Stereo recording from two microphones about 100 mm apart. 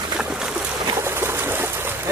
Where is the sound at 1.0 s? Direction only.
25° right (ahead or behind).